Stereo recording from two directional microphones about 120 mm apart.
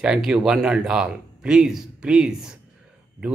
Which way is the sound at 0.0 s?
5° right (ahead or behind).